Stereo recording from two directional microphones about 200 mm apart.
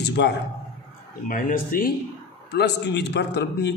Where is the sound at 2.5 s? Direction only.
60° left (ahead or behind).